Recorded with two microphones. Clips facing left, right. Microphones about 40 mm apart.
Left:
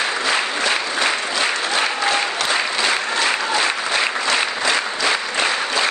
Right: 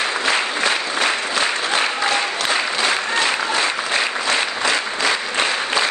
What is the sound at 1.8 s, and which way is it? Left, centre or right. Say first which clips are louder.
Applause: even; centre.